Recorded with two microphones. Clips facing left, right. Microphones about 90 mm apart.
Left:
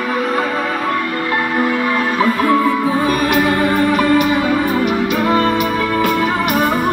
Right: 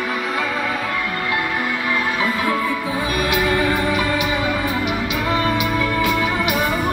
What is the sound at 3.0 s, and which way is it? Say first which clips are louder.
Music: left 2 dB; 45° left (ahead or behind).